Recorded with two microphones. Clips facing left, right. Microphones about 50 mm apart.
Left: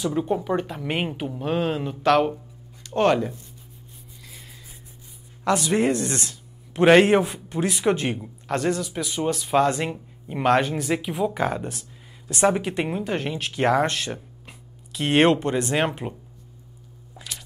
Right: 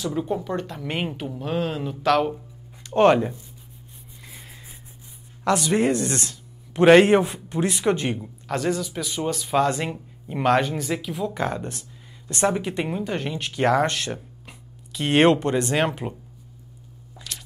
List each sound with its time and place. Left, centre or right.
0.0 s speech: centre
3.0 s speech: centre
5.4 s speech: centre
11.0 s speech: centre
17.1 s squish: centre